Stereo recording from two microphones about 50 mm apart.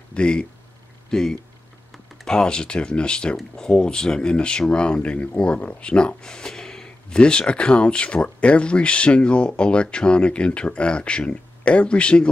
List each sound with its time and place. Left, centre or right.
0.1 s speech: left